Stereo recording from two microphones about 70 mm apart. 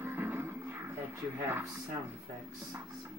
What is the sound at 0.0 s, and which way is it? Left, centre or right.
Music, right.